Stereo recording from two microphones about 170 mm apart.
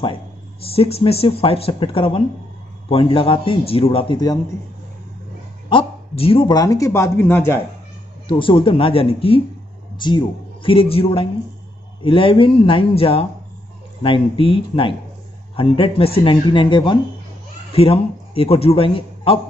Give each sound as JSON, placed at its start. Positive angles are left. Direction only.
{"t": 0.0, "sound": "speech", "side_deg": 30}
{"t": 5.7, "sound": "speech", "side_deg": 30}
{"t": 8.3, "sound": "a man's voice", "side_deg": 30}